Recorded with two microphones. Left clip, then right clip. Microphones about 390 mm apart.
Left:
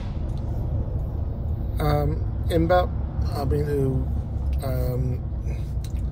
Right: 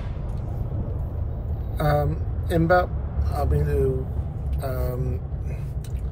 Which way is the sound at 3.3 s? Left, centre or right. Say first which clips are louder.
Even; centre.